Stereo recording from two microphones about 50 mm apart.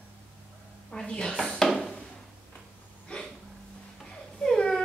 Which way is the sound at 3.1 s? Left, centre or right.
Centre.